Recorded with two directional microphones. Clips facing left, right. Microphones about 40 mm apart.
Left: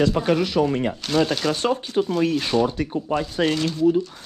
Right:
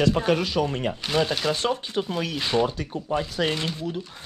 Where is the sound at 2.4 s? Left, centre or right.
Right.